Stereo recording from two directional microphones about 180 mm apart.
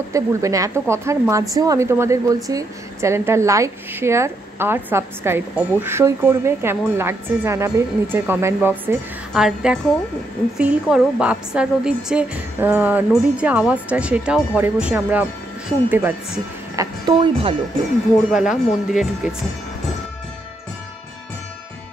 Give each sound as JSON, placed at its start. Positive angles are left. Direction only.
{"t": 0.1, "sound": "a woman's voice", "side_deg": -15}
{"t": 17.0, "sound": "speech", "side_deg": -25}
{"t": 18.3, "sound": "speech", "side_deg": -5}